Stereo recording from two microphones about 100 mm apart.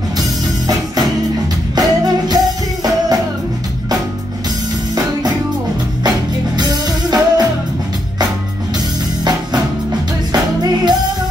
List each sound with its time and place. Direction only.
0.2 s music: 40° right (ahead or behind)
6.0 s music: 45° right (ahead or behind)
10.3 s music: 45° right (ahead or behind)